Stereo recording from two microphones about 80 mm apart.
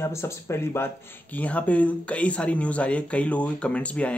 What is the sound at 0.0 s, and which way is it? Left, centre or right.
Speech, left.